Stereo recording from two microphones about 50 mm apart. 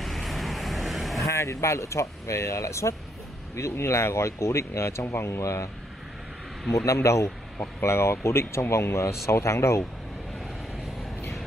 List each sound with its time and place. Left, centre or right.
0.0 s vehicle: centre
1.2 s speech: left
3.5 s speech: left
6.9 s speech: left
7.8 s speech: left